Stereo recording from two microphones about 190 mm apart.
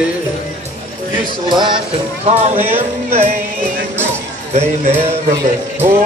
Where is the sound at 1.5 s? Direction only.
25° right (ahead or behind).